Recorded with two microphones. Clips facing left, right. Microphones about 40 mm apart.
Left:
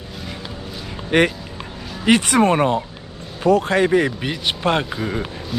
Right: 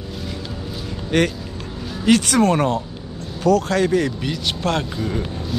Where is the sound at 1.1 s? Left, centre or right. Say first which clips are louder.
Left 2 dB; left.